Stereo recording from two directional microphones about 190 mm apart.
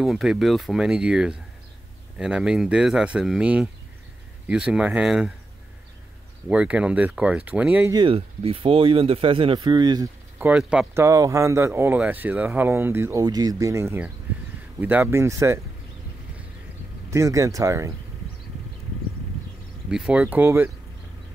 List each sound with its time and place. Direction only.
0.0 s speech: centre (ahead or behind)
6.5 s speech: 5° right (ahead or behind)
7.9 s speech: 25° right (ahead or behind)
10.4 s speech: 5° right (ahead or behind)
11.1 s speech: 15° right (ahead or behind)
17.1 s speech: 15° right (ahead or behind)
19.9 s speech: 5° right (ahead or behind)